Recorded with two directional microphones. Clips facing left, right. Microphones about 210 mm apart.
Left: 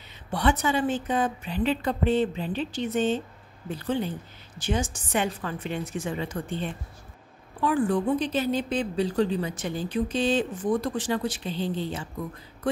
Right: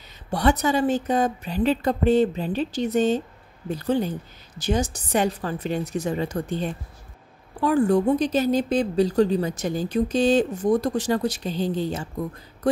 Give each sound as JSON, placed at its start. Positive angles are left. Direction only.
{"t": 0.3, "sound": "a woman's voice", "side_deg": -40}